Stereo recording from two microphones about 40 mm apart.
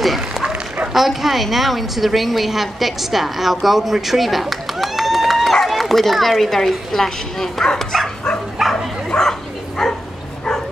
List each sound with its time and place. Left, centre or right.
0.9 s a woman's voice: centre
8.6 s bow-wow: centre
9.1 s bow-wow: centre